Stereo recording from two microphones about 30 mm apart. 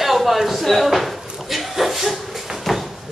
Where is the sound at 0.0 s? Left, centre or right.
Centre.